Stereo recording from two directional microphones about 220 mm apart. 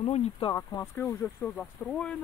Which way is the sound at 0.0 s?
25° left (ahead or behind).